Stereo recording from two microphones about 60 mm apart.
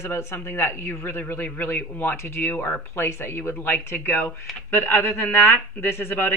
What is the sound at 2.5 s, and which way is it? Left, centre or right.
Speech, left.